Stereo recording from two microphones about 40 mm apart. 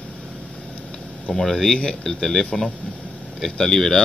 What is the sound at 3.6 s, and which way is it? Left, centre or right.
Speech, centre.